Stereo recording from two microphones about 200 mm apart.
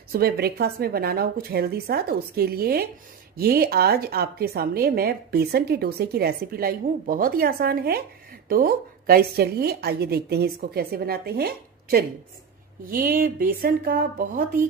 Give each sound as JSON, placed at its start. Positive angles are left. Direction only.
{"t": 0.1, "sound": "a woman's voice", "side_deg": -50}